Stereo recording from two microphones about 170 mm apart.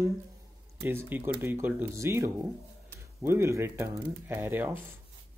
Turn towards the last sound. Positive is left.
turn(degrees=-10)  # may be behind; listen again after turning